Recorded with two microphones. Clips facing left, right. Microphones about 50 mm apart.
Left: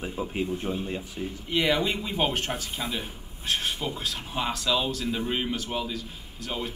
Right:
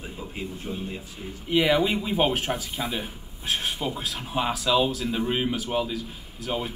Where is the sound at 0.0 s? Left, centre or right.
Left.